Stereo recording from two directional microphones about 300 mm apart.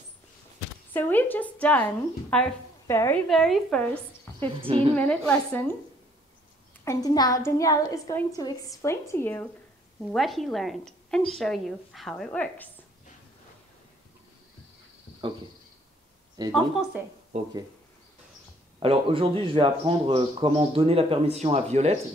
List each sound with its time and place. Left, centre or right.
0.9 s a woman's voice: centre
4.6 s speech: centre
4.9 s a woman's voice: centre
6.8 s a woman's voice: centre
16.4 s speech: centre
18.8 s speech: centre